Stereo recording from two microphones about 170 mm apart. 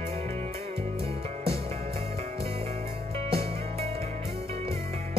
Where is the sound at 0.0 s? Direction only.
40° right (ahead or behind).